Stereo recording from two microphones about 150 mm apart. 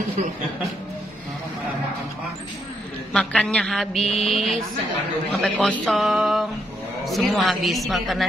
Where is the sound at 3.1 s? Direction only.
5° left (ahead or behind).